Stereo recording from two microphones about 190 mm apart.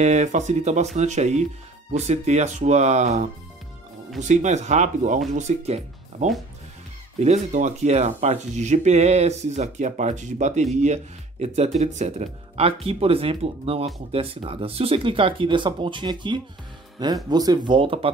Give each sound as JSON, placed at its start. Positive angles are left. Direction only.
{"t": 0.0, "sound": "speech", "side_deg": -40}